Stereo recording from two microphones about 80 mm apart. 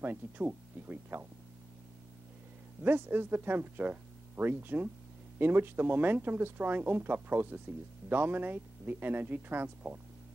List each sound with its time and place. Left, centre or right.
0.0 s speech: right
2.8 s speech: right